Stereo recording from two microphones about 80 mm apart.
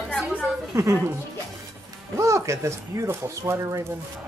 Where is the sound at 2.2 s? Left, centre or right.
Right.